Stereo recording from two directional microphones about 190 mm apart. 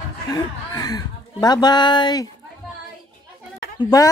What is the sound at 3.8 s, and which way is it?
Speech, 20° left (ahead or behind).